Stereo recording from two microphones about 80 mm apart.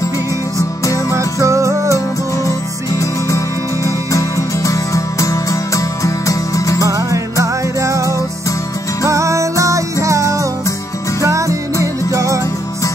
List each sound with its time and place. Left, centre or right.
0.6 s music: left
1.1 s music: right
2.3 s music: left
6.9 s music: right